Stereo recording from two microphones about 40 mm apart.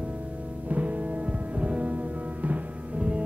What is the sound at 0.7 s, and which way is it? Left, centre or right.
Music, right.